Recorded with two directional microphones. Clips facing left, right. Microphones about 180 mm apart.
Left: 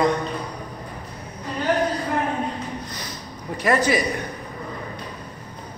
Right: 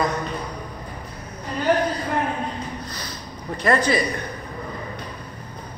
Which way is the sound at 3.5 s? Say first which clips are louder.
Even; 10° left (ahead or behind).